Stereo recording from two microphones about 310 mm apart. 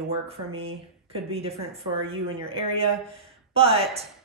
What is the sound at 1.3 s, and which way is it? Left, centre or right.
Speech, centre.